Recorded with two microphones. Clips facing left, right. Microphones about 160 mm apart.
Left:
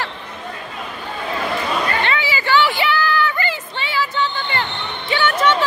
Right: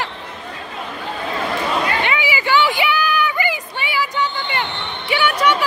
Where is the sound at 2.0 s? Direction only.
15° right (ahead or behind).